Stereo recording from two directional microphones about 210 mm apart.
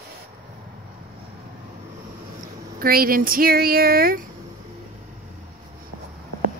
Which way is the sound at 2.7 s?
45° right (ahead or behind).